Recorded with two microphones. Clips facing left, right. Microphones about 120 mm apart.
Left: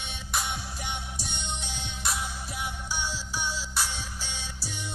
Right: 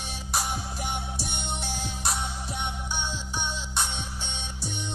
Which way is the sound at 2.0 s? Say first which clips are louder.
Even; 30° right (ahead or behind).